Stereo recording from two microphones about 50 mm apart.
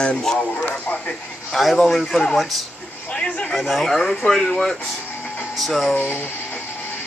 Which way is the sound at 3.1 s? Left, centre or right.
Left.